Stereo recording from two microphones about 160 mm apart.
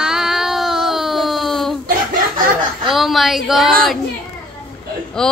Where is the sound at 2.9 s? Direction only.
Centre (ahead or behind).